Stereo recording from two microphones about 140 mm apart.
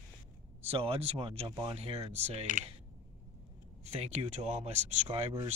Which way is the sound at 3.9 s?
50° right (ahead or behind).